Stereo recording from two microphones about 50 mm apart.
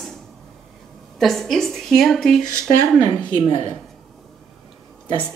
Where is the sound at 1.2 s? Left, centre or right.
Centre.